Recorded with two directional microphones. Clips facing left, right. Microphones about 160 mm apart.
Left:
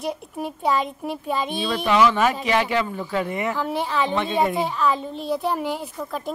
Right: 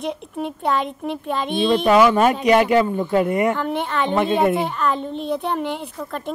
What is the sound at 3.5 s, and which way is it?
A child's voice, 5° left (ahead or behind).